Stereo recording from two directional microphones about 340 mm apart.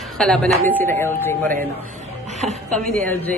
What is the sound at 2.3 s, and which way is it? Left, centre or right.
Music, centre.